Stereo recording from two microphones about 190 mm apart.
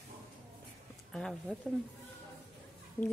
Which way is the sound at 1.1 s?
Centre (ahead or behind).